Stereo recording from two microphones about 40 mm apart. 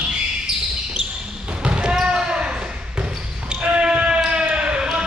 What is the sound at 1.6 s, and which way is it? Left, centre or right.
Basketball bounce, right.